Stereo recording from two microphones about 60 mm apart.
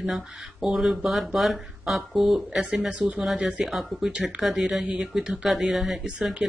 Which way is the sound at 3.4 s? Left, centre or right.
Centre.